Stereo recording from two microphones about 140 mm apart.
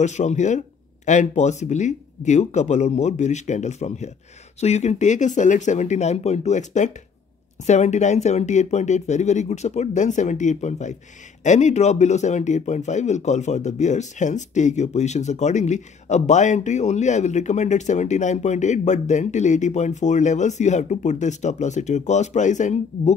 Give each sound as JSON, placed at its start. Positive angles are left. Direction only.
{"t": 0.0, "sound": "speech", "side_deg": 55}